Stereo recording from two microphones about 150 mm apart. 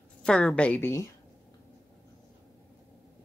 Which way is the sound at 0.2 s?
5° left (ahead or behind).